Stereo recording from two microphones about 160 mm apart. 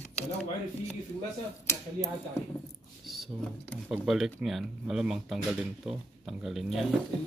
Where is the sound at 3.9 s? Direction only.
5° right (ahead or behind).